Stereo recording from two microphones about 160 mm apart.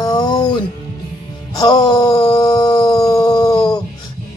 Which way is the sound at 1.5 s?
25° left (ahead or behind).